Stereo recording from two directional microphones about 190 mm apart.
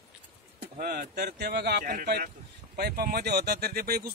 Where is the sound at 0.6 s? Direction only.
50° right (ahead or behind).